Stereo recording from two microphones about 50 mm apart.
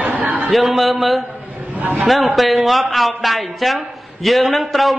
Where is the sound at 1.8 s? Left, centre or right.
Right.